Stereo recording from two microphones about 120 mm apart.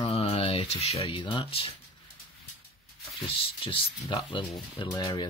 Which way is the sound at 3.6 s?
45° left (ahead or behind).